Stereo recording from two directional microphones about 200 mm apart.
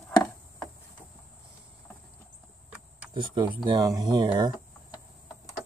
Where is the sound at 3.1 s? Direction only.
25° right (ahead or behind).